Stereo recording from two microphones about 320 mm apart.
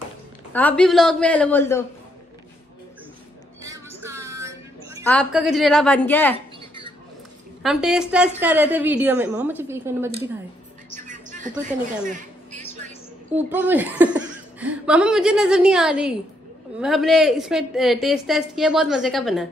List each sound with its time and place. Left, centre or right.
0.5 s speech: centre
3.6 s music: centre
5.0 s speech: centre
7.6 s speech: centre
11.1 s a sound: right
13.3 s speech: centre